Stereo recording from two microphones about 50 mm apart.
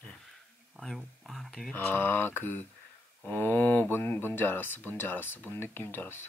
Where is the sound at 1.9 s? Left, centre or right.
Left.